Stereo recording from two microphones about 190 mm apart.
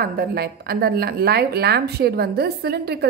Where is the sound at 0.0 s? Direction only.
50° right (ahead or behind).